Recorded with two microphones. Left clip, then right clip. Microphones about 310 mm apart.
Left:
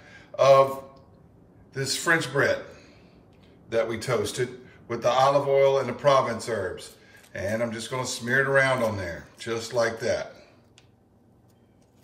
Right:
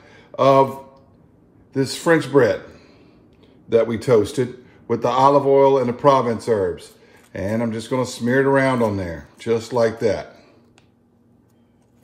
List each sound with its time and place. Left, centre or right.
0.0 s mantra: right
1.7 s a man's voice: centre
3.6 s a man's voice: right